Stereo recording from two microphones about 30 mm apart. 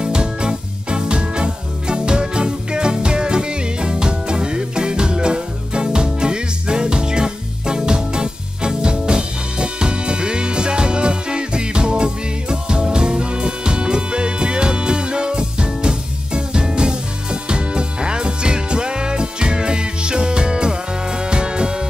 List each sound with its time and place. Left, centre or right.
0.0 s music: right